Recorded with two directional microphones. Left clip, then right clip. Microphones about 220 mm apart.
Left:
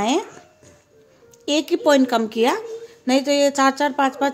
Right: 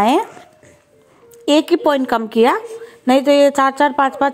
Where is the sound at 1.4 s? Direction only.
15° right (ahead or behind).